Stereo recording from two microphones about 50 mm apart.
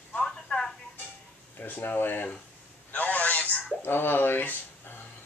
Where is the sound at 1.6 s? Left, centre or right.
Left.